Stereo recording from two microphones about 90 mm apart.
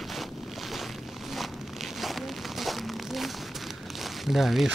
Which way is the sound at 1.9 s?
Centre (ahead or behind).